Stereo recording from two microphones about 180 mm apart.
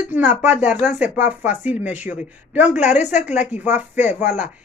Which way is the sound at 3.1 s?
40° left (ahead or behind).